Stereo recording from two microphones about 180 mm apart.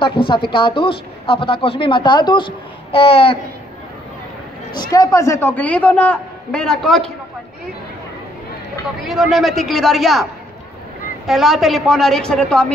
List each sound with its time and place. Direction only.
0.0 s a woman's voice: 30° left (ahead or behind)
4.7 s a man's voice: 20° left (ahead or behind); by 7.1 s 5° left (ahead or behind)
9.0 s a woman's voice: centre (ahead or behind)
11.2 s a woman's voice: centre (ahead or behind)